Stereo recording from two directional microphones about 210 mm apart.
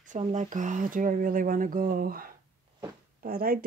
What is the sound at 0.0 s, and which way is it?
Speech, 35° right (ahead or behind).